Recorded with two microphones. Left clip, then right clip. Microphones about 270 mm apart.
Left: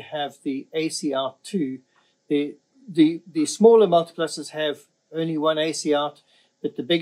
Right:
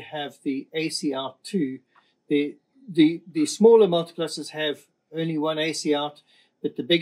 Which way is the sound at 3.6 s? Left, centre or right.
Centre.